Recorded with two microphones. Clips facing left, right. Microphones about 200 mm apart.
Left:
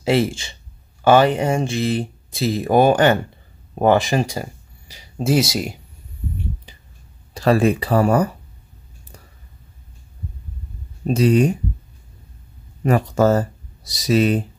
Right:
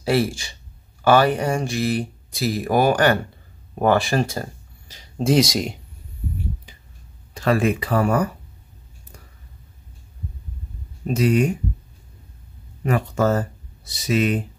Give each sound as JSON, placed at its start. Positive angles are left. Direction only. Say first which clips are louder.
{"t": 0.0, "sound": "speech", "louder": "left 2 dB", "side_deg": 20}
{"t": 7.3, "sound": "speech", "louder": "left 3 dB", "side_deg": 35}
{"t": 11.1, "sound": "speech", "louder": "left 3 dB", "side_deg": 30}
{"t": 12.8, "sound": "speech", "louder": "left 4 dB", "side_deg": 40}